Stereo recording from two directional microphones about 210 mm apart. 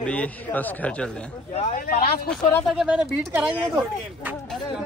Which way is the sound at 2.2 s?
Centre (ahead or behind).